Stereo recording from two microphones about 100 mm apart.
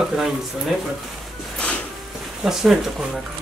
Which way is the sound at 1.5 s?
10° left (ahead or behind).